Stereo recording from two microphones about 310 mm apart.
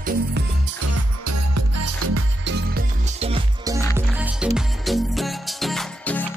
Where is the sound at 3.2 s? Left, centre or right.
Centre.